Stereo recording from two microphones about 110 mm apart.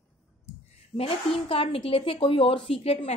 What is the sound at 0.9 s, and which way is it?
Speech, 60° left (ahead or behind).